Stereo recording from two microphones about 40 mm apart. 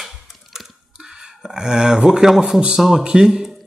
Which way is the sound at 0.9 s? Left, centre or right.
Centre.